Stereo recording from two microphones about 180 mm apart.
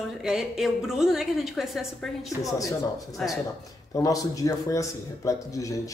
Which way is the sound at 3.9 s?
20° left (ahead or behind).